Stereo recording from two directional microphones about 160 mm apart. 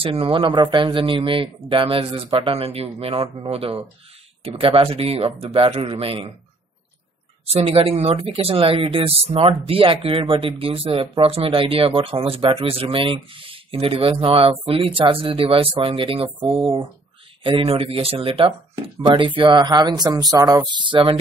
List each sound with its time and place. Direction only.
0.0 s speech: 35° right (ahead or behind)
7.4 s speech: 35° right (ahead or behind)